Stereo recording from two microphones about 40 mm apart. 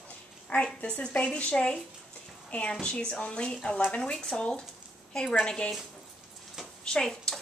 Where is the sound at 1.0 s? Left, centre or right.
Left.